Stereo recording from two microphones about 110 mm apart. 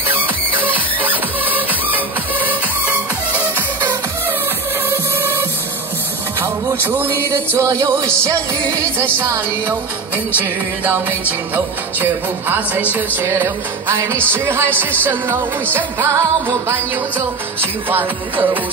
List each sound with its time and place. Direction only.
0.7 s music: 15° right (ahead or behind)
6.4 s music: 25° right (ahead or behind)